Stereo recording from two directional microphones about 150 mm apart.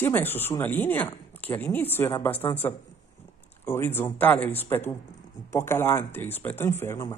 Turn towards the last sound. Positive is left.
turn(degrees=15)  # may be behind; listen again after turning